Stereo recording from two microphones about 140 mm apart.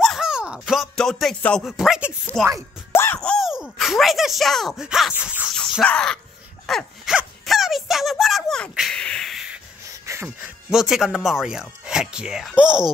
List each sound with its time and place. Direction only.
0.0 s speech: centre (ahead or behind)
2.9 s music: 15° left (ahead or behind); by 3.6 s centre (ahead or behind)
3.6 s speech: centre (ahead or behind)
5.1 s sneeze: 10° right (ahead or behind)
5.5 s groan: 5° left (ahead or behind)
6.6 s a sound: 5° left (ahead or behind)
10.0 s music: 20° right (ahead or behind)
10.7 s speech: 5° right (ahead or behind)